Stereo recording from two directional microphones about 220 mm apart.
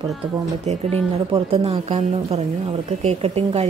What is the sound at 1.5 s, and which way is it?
Speech, 25° right (ahead or behind).